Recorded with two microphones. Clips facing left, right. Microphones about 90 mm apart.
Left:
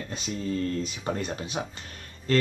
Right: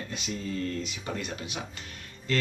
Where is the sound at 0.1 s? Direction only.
40° left (ahead or behind).